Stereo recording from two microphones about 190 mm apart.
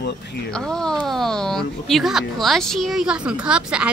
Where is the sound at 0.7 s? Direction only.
5° left (ahead or behind).